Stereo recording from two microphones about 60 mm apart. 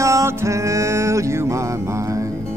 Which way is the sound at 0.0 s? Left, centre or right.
Right.